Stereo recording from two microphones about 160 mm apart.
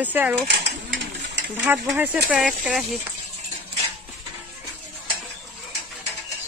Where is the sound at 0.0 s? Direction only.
10° right (ahead or behind).